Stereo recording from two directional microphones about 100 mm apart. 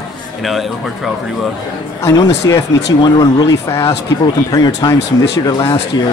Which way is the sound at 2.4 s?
35° left (ahead or behind).